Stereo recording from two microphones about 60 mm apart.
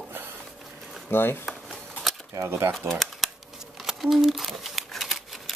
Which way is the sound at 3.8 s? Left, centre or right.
Centre.